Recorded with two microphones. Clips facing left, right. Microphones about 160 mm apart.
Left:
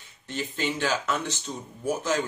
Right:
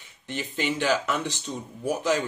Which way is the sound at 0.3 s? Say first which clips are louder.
Right 1 dB; 15° right (ahead or behind).